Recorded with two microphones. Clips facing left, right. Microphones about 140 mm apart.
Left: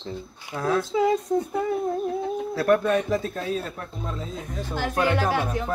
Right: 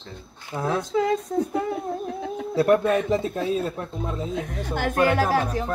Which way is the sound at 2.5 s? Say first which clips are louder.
Right 2 dB; 25° right (ahead or behind).